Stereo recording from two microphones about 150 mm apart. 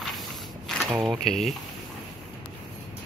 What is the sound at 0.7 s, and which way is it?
Speech, centre (ahead or behind).